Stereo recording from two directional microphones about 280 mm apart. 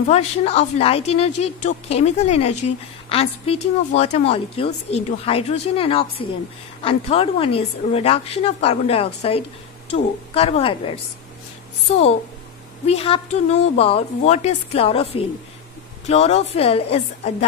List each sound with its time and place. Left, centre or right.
0.1 s a woman's voice: left
12.8 s a woman's voice: left